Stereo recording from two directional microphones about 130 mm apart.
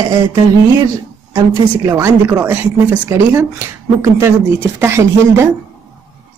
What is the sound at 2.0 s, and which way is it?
Speech, 15° right (ahead or behind).